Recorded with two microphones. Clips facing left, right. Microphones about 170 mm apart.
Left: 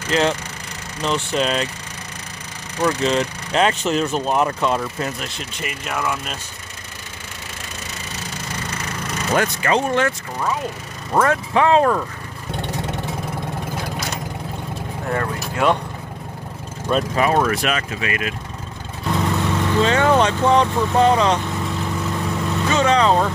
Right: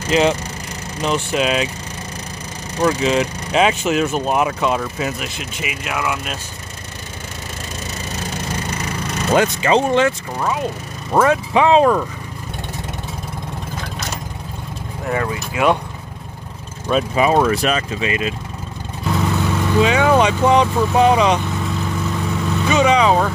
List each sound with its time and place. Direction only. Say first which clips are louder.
0.1 s speech: right 3 dB; 15° right (ahead or behind)
2.8 s speech: right 2 dB; 5° right (ahead or behind)
9.3 s speech: right 4 dB; 20° right (ahead or behind)
15.0 s speech: right 2 dB; 5° right (ahead or behind)
16.9 s speech: right 2 dB; 15° right (ahead or behind)
17.6 s speech: right 3 dB; 30° right (ahead or behind)
19.1 s speech: right 1 dB; 5° right (ahead or behind)
22.2 s vehicle: right 2 dB; centre (ahead or behind)
22.7 s speech: right 2 dB; 15° right (ahead or behind)